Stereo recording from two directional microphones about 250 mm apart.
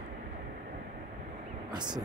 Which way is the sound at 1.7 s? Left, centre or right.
Centre.